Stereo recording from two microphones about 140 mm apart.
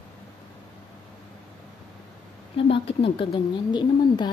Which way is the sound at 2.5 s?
40° left (ahead or behind).